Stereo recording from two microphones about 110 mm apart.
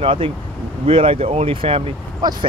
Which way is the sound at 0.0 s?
55° right (ahead or behind).